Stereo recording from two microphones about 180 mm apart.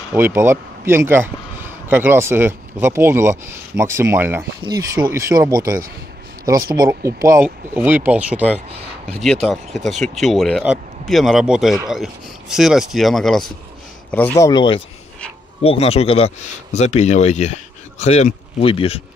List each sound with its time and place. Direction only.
0.1 s speech: 15° right (ahead or behind)
9.2 s speech: centre (ahead or behind)
14.1 s speech: 15° left (ahead or behind); by 19.0 s 30° left (ahead or behind)